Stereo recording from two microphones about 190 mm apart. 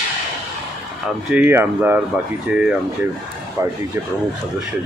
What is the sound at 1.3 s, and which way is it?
Speech, 10° right (ahead or behind).